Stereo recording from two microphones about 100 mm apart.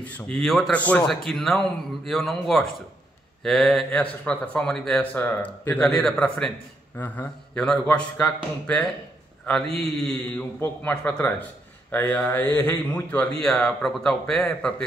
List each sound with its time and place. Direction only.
0.0 s speech: 15° left (ahead or behind)
0.4 s speech: 5° left (ahead or behind)
0.7 s speech: 15° left (ahead or behind)
1.0 s speech: 5° left (ahead or behind)
4.0 s speech: 15° left (ahead or behind)
5.1 s speech: 20° left (ahead or behind)
9.5 s speech: 5° left (ahead or behind)
10.6 s speech: 15° left (ahead or behind)
13.4 s speech: 5° left (ahead or behind)